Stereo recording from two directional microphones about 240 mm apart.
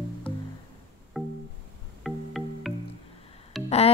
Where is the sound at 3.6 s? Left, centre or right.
Left.